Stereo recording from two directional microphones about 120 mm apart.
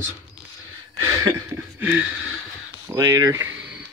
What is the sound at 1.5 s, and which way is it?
Speech, 20° right (ahead or behind).